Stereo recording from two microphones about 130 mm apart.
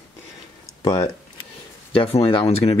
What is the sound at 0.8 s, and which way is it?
Speech, 25° left (ahead or behind).